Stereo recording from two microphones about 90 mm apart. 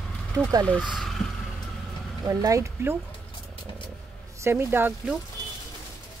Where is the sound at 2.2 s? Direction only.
40° right (ahead or behind).